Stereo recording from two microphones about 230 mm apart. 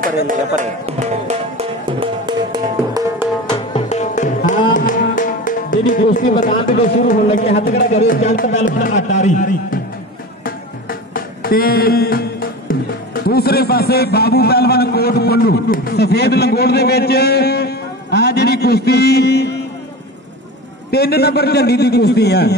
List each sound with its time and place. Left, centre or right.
0.3 s music: right; by 3.3 s centre
3.4 s music: left
6.4 s speech: left
7.9 s speech: left
10.4 s music: left
20.9 s a man's voice: left